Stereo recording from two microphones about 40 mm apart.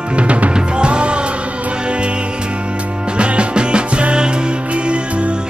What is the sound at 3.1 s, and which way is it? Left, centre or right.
Music, right.